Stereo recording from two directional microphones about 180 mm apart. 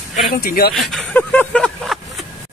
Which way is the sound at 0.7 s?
Centre (ahead or behind).